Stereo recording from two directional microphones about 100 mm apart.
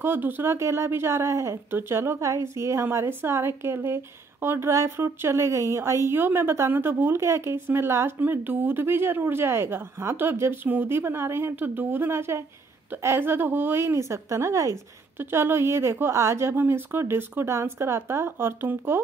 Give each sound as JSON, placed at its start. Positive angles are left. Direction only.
{"t": 0.0, "sound": "a woman's voice", "side_deg": -20}